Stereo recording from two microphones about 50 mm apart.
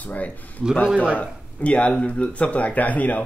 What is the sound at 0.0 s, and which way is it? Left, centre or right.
Speech, left.